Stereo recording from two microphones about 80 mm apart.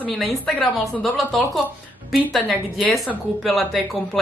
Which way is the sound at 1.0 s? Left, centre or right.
Centre.